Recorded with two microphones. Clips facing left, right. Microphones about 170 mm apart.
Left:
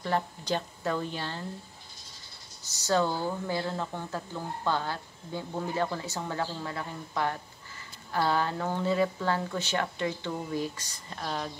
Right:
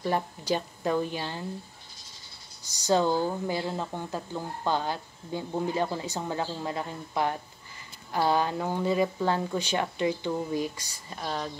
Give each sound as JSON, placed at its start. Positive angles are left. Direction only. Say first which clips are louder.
{"t": 0.0, "sound": "speech", "louder": "right 1 dB", "side_deg": -15}
{"t": 2.6, "sound": "speech", "louder": "right 2 dB", "side_deg": -15}